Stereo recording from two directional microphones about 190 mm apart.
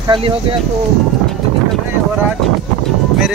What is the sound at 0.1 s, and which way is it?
Speech, 30° right (ahead or behind).